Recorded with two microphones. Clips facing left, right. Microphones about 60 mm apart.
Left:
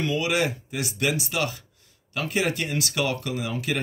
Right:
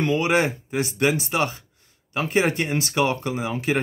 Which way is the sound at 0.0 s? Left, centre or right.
Right.